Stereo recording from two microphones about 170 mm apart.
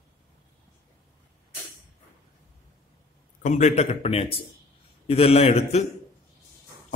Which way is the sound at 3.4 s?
45° left (ahead or behind).